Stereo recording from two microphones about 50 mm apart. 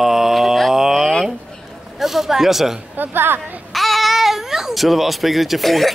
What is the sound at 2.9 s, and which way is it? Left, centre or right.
Speech, right.